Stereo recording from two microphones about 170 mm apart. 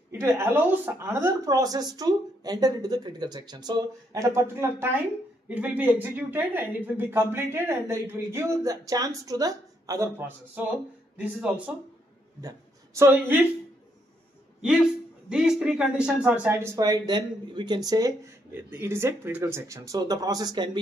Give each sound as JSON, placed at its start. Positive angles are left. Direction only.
{"t": 0.1, "sound": "a woman's voice", "side_deg": -15}
{"t": 12.4, "sound": "speech", "side_deg": -15}
{"t": 14.6, "sound": "speech", "side_deg": -5}